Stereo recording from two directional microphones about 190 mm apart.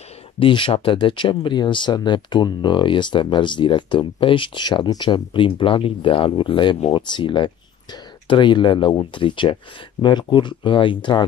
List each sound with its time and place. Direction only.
0.4 s speech: 25° left (ahead or behind)